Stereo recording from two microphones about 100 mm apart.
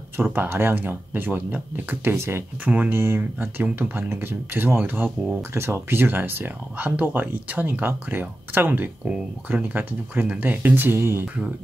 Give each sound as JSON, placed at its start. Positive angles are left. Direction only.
{"t": 0.2, "sound": "speech", "side_deg": -20}